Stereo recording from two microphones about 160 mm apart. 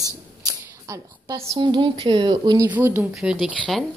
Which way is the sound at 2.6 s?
15° right (ahead or behind).